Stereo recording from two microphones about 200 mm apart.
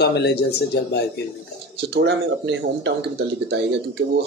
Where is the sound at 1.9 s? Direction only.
60° right (ahead or behind).